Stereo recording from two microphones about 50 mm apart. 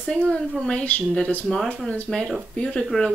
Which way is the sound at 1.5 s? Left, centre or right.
Centre.